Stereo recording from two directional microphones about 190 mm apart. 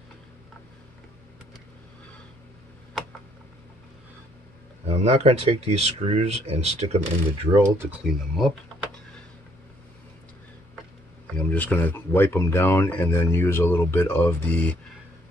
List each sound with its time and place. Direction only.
4.8 s speech: 35° right (ahead or behind)
7.6 s speech: 15° right (ahead or behind)
8.0 s speech: centre (ahead or behind)
11.3 s speech: 10° left (ahead or behind)